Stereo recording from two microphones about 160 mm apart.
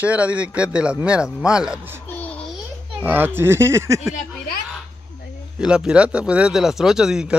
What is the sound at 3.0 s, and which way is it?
Speech, 10° right (ahead or behind).